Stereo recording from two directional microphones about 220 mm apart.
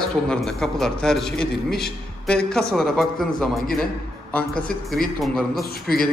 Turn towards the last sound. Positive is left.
turn(degrees=45)  # may be behind; listen again after turning